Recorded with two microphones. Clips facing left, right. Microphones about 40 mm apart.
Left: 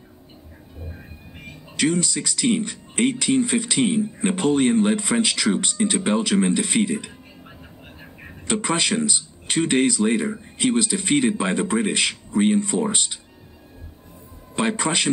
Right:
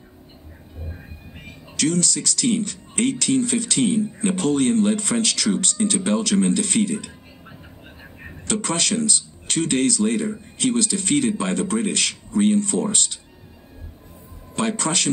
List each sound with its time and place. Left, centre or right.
1.8 s speech: centre
8.5 s speech: centre
14.5 s speech: centre